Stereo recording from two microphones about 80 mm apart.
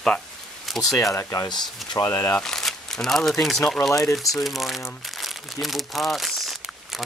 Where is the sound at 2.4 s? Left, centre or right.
Centre.